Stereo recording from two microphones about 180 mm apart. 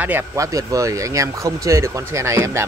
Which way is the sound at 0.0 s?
15° right (ahead or behind).